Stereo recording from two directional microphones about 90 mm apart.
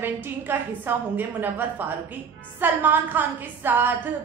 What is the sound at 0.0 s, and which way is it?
A woman's voice, 25° right (ahead or behind).